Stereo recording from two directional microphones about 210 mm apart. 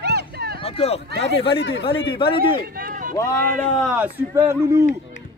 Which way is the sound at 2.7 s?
40° right (ahead or behind).